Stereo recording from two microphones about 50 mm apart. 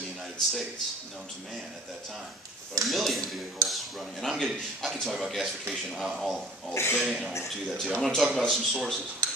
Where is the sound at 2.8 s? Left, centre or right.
Centre.